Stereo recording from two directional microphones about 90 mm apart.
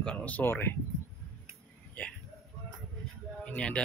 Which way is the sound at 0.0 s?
15° left (ahead or behind).